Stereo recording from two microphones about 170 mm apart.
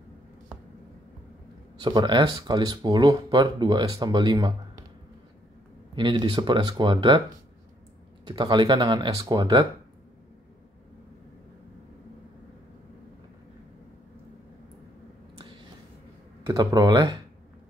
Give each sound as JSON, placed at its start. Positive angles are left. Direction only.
{"t": 1.8, "sound": "speech", "side_deg": -25}
{"t": 5.9, "sound": "speech", "side_deg": -25}
{"t": 8.3, "sound": "speech", "side_deg": -25}
{"t": 16.4, "sound": "speech", "side_deg": -25}